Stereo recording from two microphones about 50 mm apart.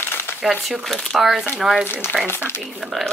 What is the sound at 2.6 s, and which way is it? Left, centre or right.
Speech, centre.